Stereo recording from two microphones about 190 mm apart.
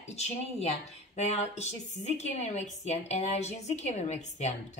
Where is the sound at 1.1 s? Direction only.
35° left (ahead or behind).